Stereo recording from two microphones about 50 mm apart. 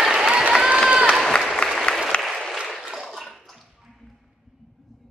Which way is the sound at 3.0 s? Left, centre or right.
Centre.